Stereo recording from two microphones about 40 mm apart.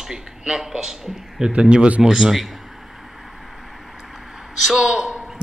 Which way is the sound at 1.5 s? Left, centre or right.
Right.